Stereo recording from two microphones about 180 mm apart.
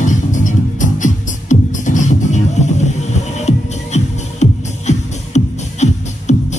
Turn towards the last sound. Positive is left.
turn(degrees=40)  # may be behind; listen again after turning